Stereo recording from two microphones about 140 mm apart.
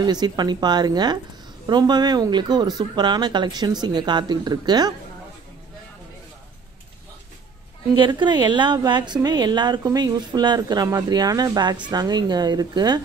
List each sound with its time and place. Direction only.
0.0 s speech: 30° right (ahead or behind)
7.9 s a woman's voice: 35° right (ahead or behind)